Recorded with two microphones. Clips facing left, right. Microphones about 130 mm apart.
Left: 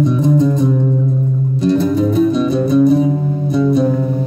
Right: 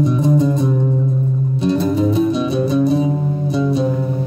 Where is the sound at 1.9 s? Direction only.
5° right (ahead or behind).